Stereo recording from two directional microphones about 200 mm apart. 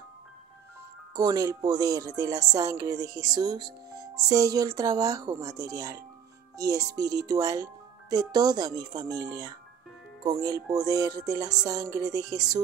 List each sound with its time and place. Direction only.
1.1 s speech: 20° right (ahead or behind)